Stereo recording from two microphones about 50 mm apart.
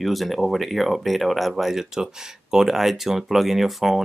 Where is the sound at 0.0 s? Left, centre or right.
Centre.